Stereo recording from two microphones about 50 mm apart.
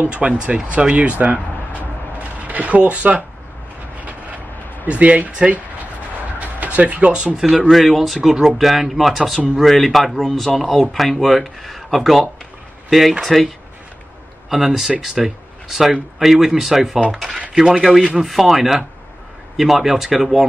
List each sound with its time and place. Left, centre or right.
0.1 s speech: right
4.0 s vehicle: right
4.8 s speech: right
7.6 s speech: centre
13.2 s speech: centre
14.5 s speech: centre